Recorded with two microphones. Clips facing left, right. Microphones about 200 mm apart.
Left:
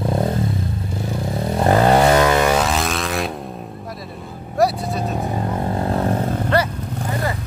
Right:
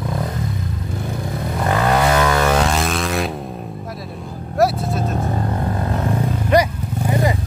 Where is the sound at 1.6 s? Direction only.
30° left (ahead or behind).